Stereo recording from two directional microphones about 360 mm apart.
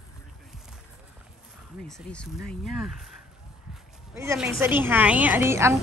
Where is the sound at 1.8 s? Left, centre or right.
Centre.